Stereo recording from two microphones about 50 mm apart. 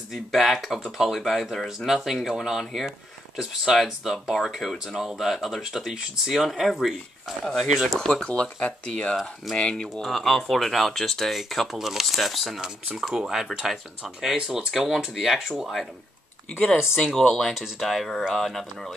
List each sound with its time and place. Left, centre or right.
0.1 s speech: centre
7.9 s speech: centre
8.2 s speech: left
9.1 s speech: centre
10.0 s speech: centre
12.5 s speech: centre
17.0 s speech: centre